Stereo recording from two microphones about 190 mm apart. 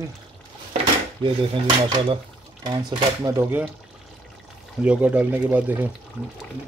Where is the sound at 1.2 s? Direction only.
25° right (ahead or behind).